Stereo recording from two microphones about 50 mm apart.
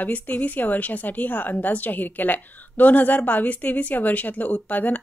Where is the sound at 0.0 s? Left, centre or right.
Left.